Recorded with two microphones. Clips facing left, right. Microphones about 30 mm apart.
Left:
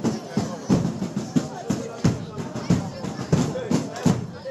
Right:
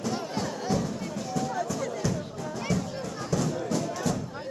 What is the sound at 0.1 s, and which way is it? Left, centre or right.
Music, right.